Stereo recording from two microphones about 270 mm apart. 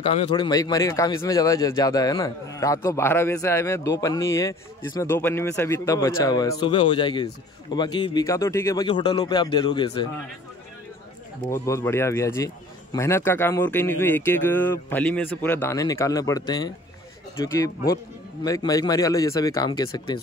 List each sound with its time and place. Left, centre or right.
0.0 s speech: left
11.4 s speech: centre